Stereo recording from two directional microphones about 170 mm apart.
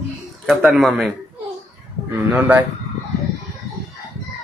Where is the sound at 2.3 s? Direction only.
10° right (ahead or behind).